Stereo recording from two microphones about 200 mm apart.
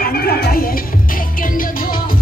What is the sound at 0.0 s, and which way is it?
Music, 50° left (ahead or behind).